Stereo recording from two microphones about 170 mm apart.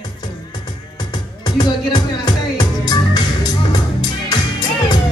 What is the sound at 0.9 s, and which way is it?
Music, 25° left (ahead or behind).